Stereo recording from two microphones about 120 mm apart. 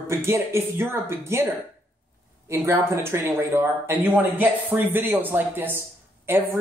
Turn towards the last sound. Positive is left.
turn(degrees=-20)  # may be behind; listen again after turning